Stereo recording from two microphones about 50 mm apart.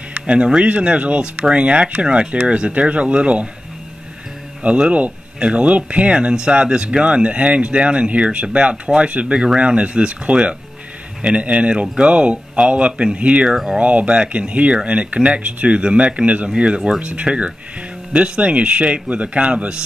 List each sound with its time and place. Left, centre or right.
0.1 s speech: right
4.6 s speech: centre
4.9 s speech: right